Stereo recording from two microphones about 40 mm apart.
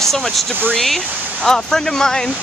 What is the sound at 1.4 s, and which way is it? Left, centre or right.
Speech, centre.